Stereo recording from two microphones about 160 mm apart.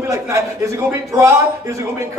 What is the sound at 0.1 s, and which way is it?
A man's voice, 20° right (ahead or behind).